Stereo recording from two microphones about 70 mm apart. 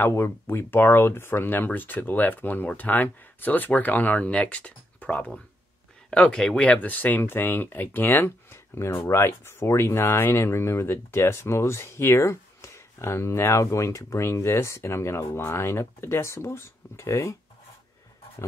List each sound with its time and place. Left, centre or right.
0.1 s speech: left